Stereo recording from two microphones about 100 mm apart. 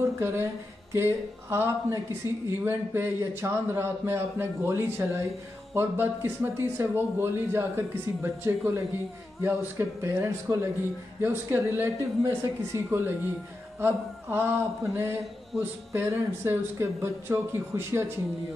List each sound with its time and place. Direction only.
0.2 s speech: 20° right (ahead or behind)